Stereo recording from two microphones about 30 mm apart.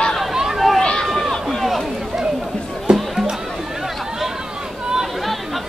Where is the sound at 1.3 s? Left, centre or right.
Centre.